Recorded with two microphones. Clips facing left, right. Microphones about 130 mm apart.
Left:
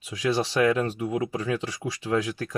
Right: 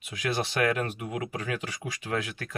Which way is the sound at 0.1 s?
30° left (ahead or behind).